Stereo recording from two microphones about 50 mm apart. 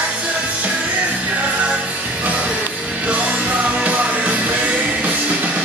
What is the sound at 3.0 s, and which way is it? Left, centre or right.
Music, right.